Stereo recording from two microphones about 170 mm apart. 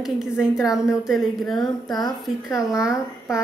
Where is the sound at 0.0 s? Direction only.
5° right (ahead or behind).